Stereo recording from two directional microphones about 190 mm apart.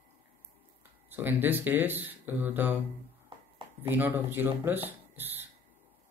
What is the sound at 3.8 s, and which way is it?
Speech, 10° right (ahead or behind).